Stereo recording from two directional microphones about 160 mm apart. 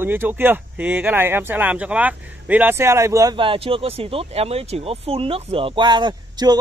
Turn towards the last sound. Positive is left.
turn(degrees=-25)  # may be behind; listen again after turning